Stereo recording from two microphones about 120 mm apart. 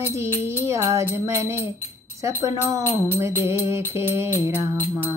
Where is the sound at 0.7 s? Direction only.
25° right (ahead or behind).